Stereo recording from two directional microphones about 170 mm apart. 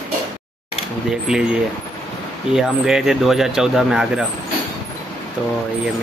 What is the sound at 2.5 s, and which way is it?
Speech, centre (ahead or behind).